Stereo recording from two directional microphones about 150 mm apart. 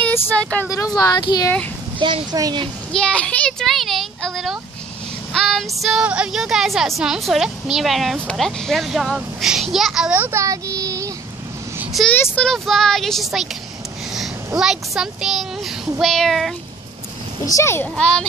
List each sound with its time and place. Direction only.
0.0 s vehicle: 10° left (ahead or behind)
0.7 s speech: 25° left (ahead or behind)
2.0 s speech: 35° right (ahead or behind)
2.9 s a woman's voice: 5° left (ahead or behind); by 11.1 s 20° right (ahead or behind)
11.8 s vehicle: centre (ahead or behind)
12.1 s a woman's voice: 10° left (ahead or behind)
14.6 s a woman's voice: 5° right (ahead or behind)
17.5 s speech: 20° left (ahead or behind)
17.9 s a woman's voice: 5° left (ahead or behind)